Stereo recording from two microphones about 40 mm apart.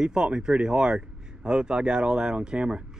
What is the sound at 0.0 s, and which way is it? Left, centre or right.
Speech, right.